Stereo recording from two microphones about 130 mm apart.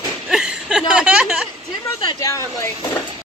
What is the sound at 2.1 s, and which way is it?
Speech, 25° left (ahead or behind).